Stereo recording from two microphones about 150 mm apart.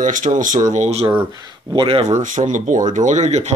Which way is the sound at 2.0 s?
55° right (ahead or behind).